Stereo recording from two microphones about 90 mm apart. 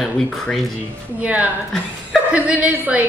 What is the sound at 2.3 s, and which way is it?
Speech, 15° right (ahead or behind).